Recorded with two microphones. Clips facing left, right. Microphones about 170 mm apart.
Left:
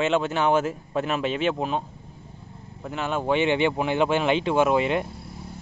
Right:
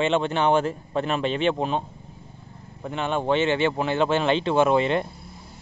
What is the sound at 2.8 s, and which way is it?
Speech, 5° left (ahead or behind).